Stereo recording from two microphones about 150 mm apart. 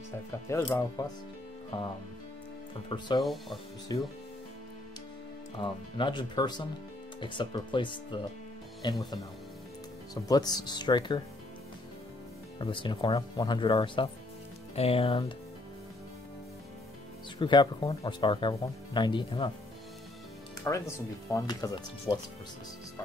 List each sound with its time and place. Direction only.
0.5 s speech: 20° left (ahead or behind)
3.2 s speech: centre (ahead or behind)
3.9 s speech: 25° left (ahead or behind)
5.6 s speech: 30° left (ahead or behind)
10.2 s speech: 25° left (ahead or behind)
12.5 s speech: 35° left (ahead or behind)
17.4 s speech: 30° left (ahead or behind)
20.6 s speech: 20° left (ahead or behind)
22.1 s speech: 40° left (ahead or behind)